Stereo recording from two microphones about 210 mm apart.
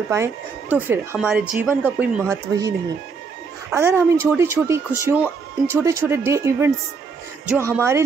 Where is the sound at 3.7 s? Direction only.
10° right (ahead or behind).